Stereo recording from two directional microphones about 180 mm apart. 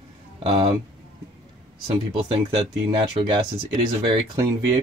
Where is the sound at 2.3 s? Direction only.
30° right (ahead or behind).